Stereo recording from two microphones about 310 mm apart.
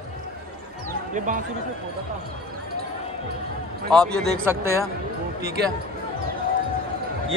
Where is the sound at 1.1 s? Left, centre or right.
Right.